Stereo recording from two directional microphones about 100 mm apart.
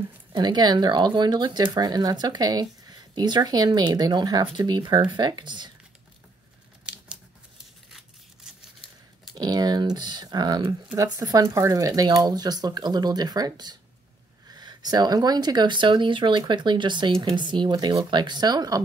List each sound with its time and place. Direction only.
0.3 s speech: 45° right (ahead or behind)
9.3 s speech: 40° right (ahead or behind)